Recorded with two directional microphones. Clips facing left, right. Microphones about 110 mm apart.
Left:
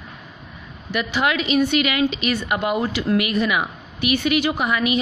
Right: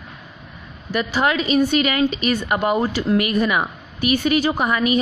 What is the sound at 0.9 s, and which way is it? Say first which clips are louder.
Speech: right 2 dB; 35° right (ahead or behind).